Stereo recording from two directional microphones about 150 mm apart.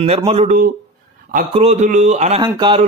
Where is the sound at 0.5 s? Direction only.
75° right (ahead or behind).